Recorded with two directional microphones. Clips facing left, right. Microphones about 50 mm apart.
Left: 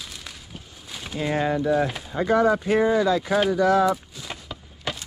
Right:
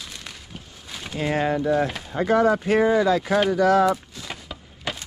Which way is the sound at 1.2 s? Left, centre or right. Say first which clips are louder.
Right 1 dB; right.